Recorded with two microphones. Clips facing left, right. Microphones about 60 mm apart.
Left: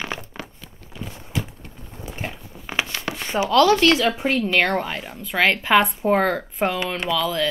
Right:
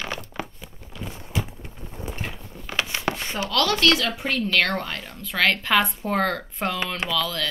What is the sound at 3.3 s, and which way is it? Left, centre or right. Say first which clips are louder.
A woman's voice: left 9 dB; centre.